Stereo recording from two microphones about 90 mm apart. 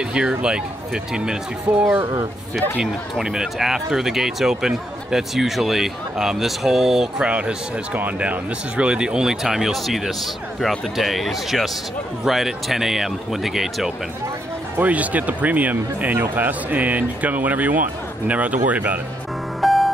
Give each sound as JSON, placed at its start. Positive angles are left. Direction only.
{"t": 0.0, "sound": "speech", "side_deg": -10}
{"t": 14.8, "sound": "speech", "side_deg": -15}
{"t": 19.6, "sound": "music", "side_deg": 0}